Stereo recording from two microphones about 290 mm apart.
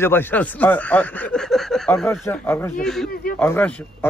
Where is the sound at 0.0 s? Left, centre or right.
Centre.